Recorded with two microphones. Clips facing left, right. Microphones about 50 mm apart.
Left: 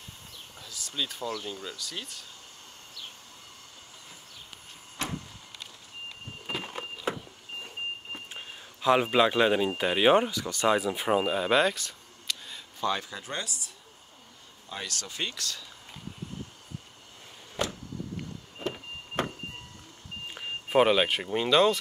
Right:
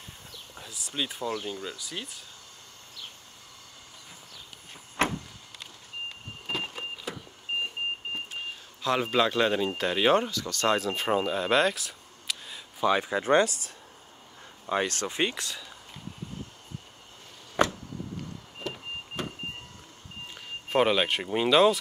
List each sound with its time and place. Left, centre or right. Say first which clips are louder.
0.6 s speech: right 1 dB; right
1.8 s speech: right 1 dB; centre
5.0 s vehicle: right 8 dB; right
6.4 s a sound: right 3 dB; centre
7.1 s vehicle: left 4 dB; left
8.8 s speech: left 3 dB; centre
12.8 s speech: right 5 dB; centre
13.1 s speech: right 13 dB; right
14.7 s speech: right 9 dB; right; by 15.6 s centre
19.2 s vehicle: left 6 dB; left
20.7 s speech: left 1 dB; centre